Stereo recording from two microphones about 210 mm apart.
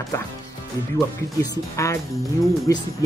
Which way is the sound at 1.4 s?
15° left (ahead or behind).